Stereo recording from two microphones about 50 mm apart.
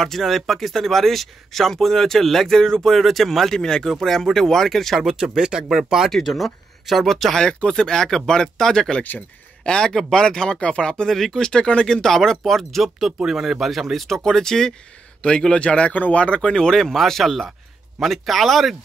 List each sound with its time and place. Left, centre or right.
0.0 s speech: centre
5.0 s speech: centre
6.0 s speech: centre
7.4 s speech: centre
11.1 s speech: centre
13.2 s speech: centre
14.0 s speech: centre; by 16.3 s left
16.3 s speech: centre